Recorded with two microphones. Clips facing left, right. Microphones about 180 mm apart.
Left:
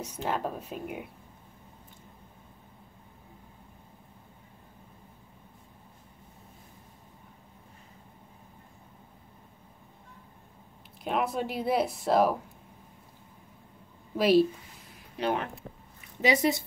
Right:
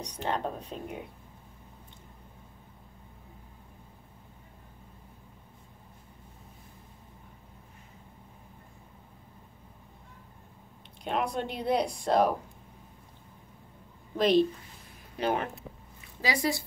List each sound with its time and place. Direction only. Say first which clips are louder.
0.0 s speech: even; 5° left (ahead or behind)
11.1 s speech: left 1 dB; 5° left (ahead or behind)
14.1 s a woman's voice: left 1 dB; 5° left (ahead or behind)
16.2 s speech: left 5 dB; 20° left (ahead or behind)